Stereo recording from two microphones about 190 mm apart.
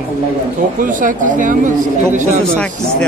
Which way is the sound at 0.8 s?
45° right (ahead or behind).